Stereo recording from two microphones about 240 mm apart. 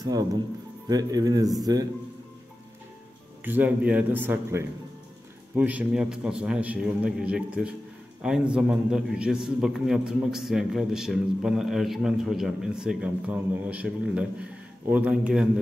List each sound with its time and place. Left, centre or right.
0.0 s a man's voice: centre
3.4 s a man's voice: centre